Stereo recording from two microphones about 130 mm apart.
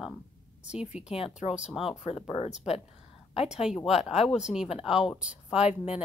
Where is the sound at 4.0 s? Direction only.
55° left (ahead or behind).